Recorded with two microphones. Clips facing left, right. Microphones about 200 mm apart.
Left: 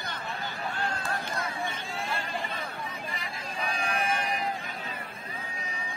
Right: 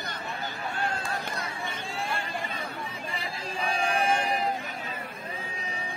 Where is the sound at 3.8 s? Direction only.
30° right (ahead or behind).